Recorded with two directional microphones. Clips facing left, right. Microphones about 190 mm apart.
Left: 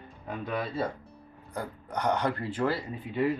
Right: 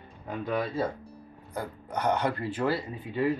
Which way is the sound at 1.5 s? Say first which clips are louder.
Right 1 dB; 10° right (ahead or behind).